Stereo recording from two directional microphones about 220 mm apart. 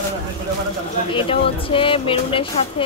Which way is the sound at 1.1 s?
25° left (ahead or behind).